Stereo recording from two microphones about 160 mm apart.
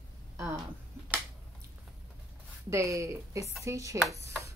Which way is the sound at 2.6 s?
20° right (ahead or behind).